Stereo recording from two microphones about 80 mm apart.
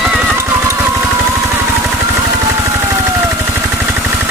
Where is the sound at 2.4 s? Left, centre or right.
Right.